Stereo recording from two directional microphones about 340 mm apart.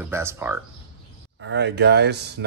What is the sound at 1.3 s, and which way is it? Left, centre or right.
Speech, right.